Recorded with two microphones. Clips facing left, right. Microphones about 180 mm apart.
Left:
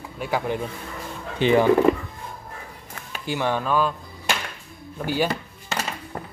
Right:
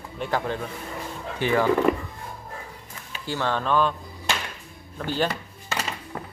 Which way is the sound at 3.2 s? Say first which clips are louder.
Left 2 dB; 15° left (ahead or behind).